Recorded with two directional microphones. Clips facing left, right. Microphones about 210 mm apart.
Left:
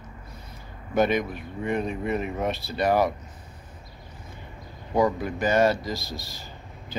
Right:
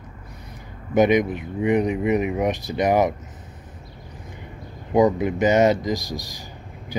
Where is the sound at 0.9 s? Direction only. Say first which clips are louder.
Right 6 dB; 20° right (ahead or behind).